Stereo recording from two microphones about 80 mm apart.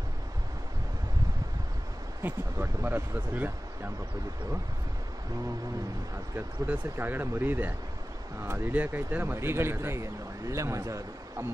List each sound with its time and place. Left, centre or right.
2.2 s speech: right
6.3 s speech: right